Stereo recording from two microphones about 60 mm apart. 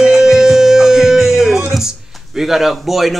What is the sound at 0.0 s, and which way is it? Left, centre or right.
Music, centre.